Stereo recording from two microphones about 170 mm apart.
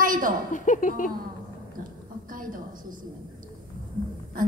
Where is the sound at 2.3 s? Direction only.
55° right (ahead or behind).